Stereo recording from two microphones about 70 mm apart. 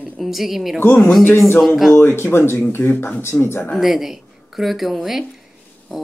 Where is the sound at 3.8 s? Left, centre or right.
Centre.